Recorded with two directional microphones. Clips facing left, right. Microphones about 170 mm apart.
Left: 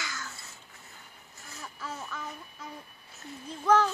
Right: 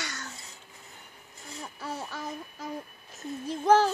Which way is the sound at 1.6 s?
35° right (ahead or behind).